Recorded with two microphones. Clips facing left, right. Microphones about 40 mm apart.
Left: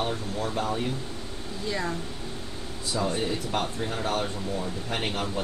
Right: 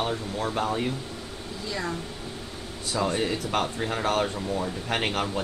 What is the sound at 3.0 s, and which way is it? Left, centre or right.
Speech, right.